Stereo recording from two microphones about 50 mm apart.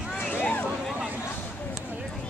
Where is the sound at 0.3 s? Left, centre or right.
Left.